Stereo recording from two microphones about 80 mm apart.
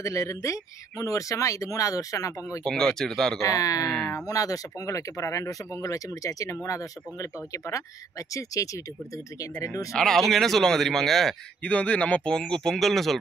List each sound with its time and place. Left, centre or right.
0.0 s speech: left
2.6 s speech: centre
3.3 s speech: left
9.9 s speech: centre
11.6 s speech: centre